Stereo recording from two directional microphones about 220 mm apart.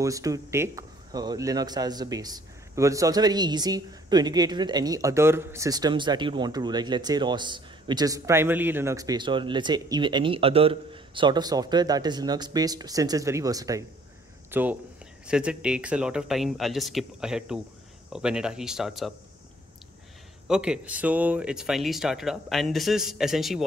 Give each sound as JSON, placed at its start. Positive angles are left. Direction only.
{"t": 0.0, "sound": "speech", "side_deg": -15}
{"t": 20.4, "sound": "speech", "side_deg": -5}